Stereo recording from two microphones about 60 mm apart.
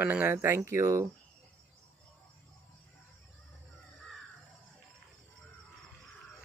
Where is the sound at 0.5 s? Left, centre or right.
Right.